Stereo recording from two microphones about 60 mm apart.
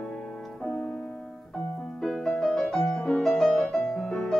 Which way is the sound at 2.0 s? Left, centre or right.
Centre.